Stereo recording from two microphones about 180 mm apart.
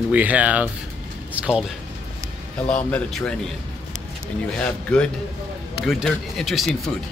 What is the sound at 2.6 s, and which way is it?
Speech, 5° left (ahead or behind).